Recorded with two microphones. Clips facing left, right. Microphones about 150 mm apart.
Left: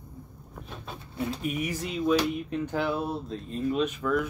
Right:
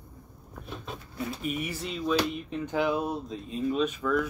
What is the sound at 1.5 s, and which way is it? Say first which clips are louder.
Speech: left 2 dB; 10° left (ahead or behind).